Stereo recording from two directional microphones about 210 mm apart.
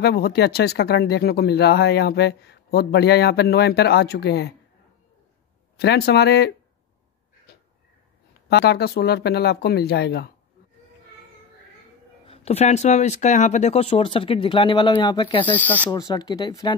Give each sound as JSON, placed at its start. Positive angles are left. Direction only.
{"t": 0.0, "sound": "speech", "side_deg": 50}
{"t": 5.8, "sound": "speech", "side_deg": 50}
{"t": 8.5, "sound": "speech", "side_deg": 50}
{"t": 12.3, "sound": "speech", "side_deg": 30}
{"t": 15.4, "sound": "speech", "side_deg": 10}
{"t": 15.9, "sound": "speech", "side_deg": 20}